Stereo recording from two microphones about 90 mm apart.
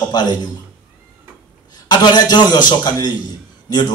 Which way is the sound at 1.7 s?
50° left (ahead or behind).